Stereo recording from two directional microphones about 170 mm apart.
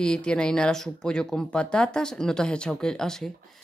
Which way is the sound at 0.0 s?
5° left (ahead or behind).